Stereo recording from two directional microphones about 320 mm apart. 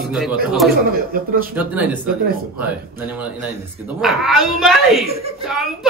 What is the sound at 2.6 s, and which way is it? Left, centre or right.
A woman's voice, centre.